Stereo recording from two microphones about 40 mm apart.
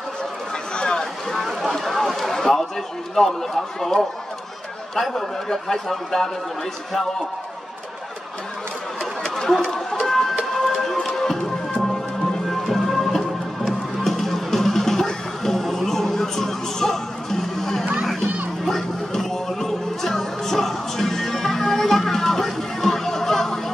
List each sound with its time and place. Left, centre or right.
0.7 s a sound: left
1.4 s a sound: centre
3.2 s a man's voice: centre
9.6 s chicken: centre
10.5 s music: centre
12.4 s music: centre